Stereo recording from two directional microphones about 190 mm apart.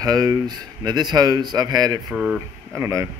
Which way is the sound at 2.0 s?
Centre (ahead or behind).